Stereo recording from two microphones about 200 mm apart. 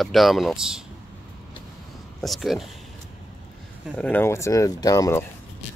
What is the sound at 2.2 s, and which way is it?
Speech, centre (ahead or behind).